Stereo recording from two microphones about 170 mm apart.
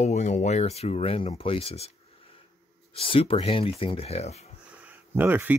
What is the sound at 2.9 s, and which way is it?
Speech, 30° left (ahead or behind).